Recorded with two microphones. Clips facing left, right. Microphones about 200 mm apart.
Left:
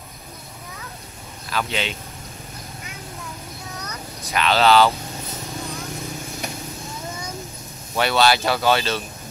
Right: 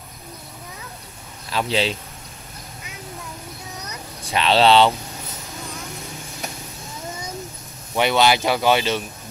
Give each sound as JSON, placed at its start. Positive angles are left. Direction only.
{"t": 1.5, "sound": "a man's voice", "side_deg": -30}
{"t": 4.2, "sound": "speech", "side_deg": -30}
{"t": 7.9, "sound": "speech", "side_deg": -15}